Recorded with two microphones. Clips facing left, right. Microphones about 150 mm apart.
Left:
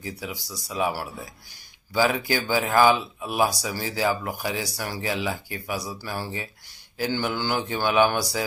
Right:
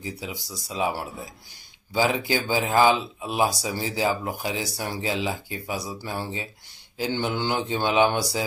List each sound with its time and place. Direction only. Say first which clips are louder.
0.0 s speech: even; 20° right (ahead or behind)